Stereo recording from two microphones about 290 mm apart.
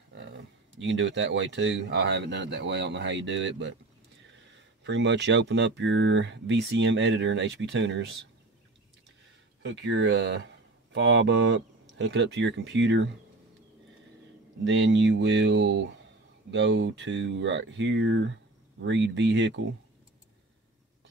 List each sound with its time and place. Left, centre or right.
0.7 s speech: right
9.6 s speech: right
14.6 s speech: right